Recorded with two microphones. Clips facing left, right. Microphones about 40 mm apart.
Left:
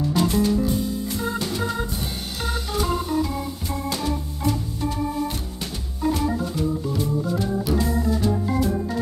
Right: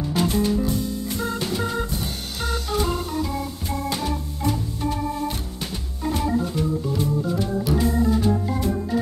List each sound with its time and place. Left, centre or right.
0.1 s music: centre
1.1 s organ: centre
7.0 s organ: centre
7.8 s organ: centre